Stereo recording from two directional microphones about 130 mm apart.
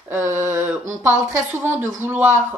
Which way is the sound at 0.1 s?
20° right (ahead or behind).